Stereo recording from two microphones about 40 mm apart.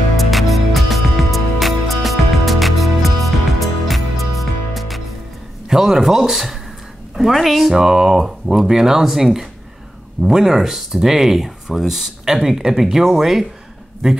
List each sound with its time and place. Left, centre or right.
0.3 s music: centre
5.7 s a man's voice: centre